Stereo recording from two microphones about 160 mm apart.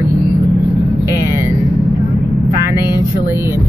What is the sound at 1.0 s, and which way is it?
Speech, 15° right (ahead or behind).